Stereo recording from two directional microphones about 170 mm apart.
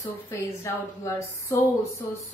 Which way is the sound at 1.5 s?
15° left (ahead or behind).